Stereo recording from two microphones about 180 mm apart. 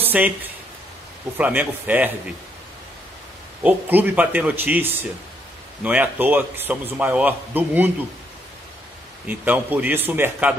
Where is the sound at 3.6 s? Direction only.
10° right (ahead or behind).